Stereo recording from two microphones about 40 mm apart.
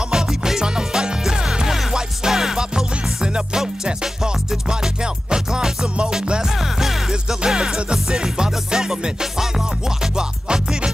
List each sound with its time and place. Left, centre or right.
0.1 s music: centre